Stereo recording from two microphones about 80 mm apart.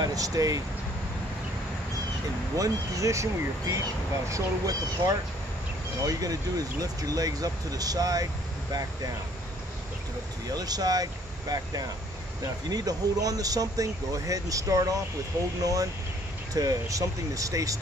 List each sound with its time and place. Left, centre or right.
0.0 s speech: right
2.5 s speech: right
10.5 s speech: right